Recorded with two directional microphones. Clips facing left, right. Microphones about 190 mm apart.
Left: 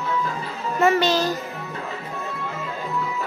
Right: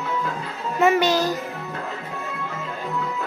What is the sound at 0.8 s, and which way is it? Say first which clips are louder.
Music: right 1 dB; 10° right (ahead or behind).